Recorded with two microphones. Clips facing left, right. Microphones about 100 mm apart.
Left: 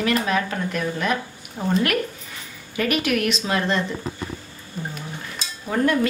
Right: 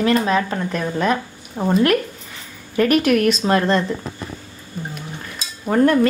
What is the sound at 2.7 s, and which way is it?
A woman's voice, 40° right (ahead or behind).